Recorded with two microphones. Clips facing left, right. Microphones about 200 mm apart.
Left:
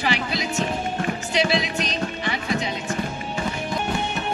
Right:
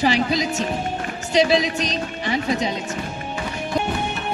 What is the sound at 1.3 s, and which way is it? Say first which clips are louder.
Speech: right 6 dB; 40° right (ahead or behind).